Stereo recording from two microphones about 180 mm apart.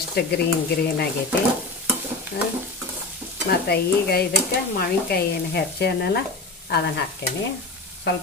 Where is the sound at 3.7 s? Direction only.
60° left (ahead or behind).